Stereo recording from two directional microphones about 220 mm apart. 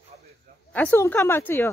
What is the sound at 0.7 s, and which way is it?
Speech, 10° left (ahead or behind).